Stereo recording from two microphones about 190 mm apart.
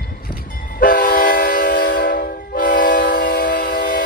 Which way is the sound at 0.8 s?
45° left (ahead or behind).